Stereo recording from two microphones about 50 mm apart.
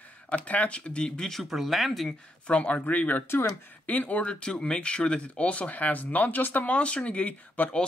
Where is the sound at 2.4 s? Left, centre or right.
Left.